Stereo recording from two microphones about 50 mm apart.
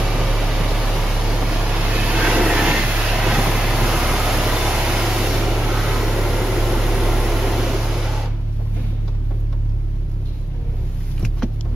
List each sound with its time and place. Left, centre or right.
0.1 s vehicle: centre
1.6 s vehicle: right